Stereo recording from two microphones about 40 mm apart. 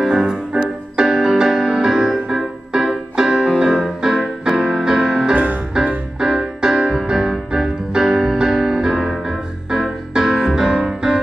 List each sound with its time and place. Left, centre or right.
0.1 s music: centre
5.3 s music: right
6.1 s music: centre